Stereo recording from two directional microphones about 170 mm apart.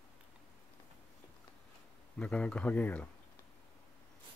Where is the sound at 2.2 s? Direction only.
5° left (ahead or behind).